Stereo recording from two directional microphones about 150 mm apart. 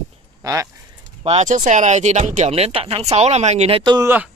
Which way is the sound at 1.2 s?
50° right (ahead or behind).